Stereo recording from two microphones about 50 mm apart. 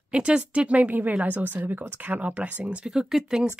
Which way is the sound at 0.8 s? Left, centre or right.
Right.